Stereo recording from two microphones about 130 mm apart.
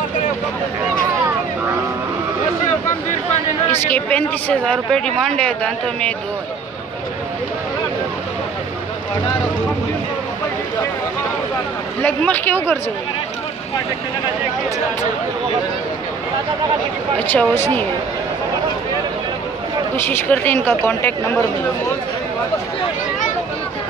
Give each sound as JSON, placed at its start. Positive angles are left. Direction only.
{"t": 3.8, "sound": "speech", "side_deg": 10}
{"t": 12.0, "sound": "speech", "side_deg": 15}
{"t": 17.3, "sound": "speech", "side_deg": 15}
{"t": 20.1, "sound": "speech", "side_deg": 15}